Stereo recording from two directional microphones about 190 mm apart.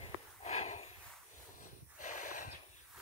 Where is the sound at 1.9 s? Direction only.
40° left (ahead or behind).